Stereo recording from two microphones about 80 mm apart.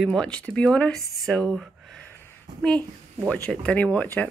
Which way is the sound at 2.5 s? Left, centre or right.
Right.